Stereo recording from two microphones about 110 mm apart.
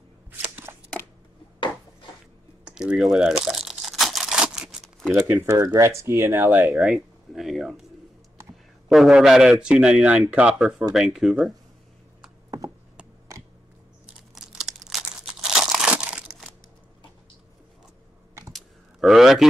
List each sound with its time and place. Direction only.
0.7 s a sound: 20° right (ahead or behind)
2.6 s crumpling: 10° right (ahead or behind)
5.4 s speech: 30° right (ahead or behind)
6.7 s speech: 5° right (ahead or behind)
8.8 s a man's voice: centre (ahead or behind)
12.4 s a sound: 35° right (ahead or behind)
14.0 s crunch: 5° right (ahead or behind)
14.9 s crumpling: 5° right (ahead or behind)
18.5 s a sound: centre (ahead or behind)